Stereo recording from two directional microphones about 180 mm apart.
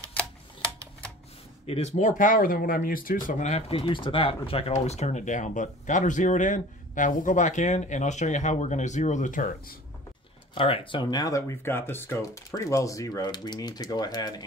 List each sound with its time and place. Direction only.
1.7 s speech: 35° left (ahead or behind)
10.5 s speech: 30° left (ahead or behind)